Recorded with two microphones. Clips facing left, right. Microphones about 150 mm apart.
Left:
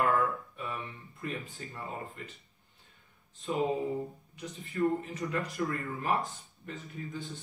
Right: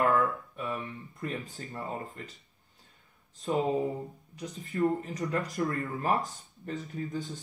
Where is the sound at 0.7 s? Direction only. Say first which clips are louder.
Right 4 dB; 40° right (ahead or behind).